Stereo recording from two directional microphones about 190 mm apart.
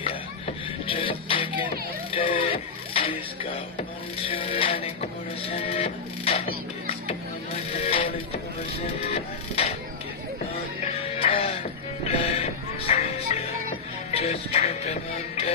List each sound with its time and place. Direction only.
0.0 s music: 30° left (ahead or behind)
4.3 s music: 30° left (ahead or behind)
9.1 s music: 35° left (ahead or behind)
11.1 s music: 30° left (ahead or behind)